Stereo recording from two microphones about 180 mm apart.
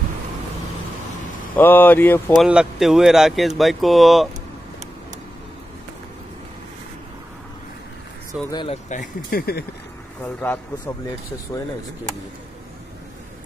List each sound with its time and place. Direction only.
1.6 s speech: 10° left (ahead or behind)
2.3 s speech: 5° right (ahead or behind)
8.3 s speech: 20° left (ahead or behind)
8.6 s speech: 40° left (ahead or behind)
10.2 s speech: 10° left (ahead or behind)